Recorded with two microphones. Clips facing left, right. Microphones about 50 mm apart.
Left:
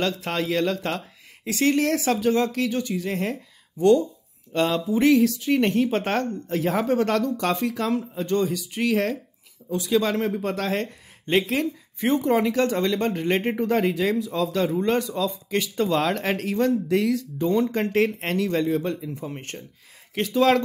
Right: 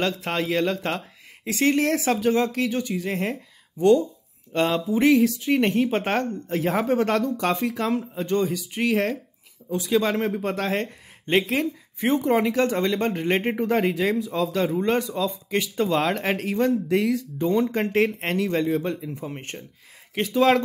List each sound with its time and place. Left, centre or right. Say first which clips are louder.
0.0 s speech: even; right